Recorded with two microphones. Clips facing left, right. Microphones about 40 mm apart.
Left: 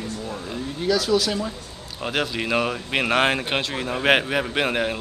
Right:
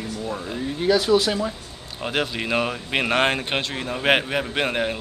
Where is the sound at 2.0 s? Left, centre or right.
Centre.